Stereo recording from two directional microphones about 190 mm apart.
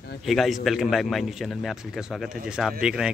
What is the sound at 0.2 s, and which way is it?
A man's voice, centre (ahead or behind).